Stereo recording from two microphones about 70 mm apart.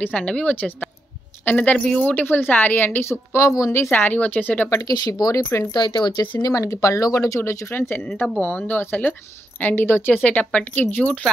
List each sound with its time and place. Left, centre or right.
0.0 s a woman's voice: centre; by 3.9 s left
3.9 s speech: left
4.8 s speech: left
5.2 s speech: left
5.7 s speech: left
6.4 s speech: left
8.2 s speech: left